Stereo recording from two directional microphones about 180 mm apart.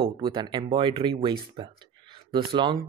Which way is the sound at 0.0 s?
25° right (ahead or behind).